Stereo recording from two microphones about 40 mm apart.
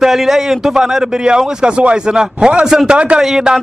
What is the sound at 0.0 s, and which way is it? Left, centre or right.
A man's voice, centre.